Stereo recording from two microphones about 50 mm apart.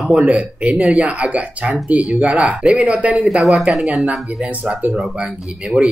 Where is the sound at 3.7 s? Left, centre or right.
Centre.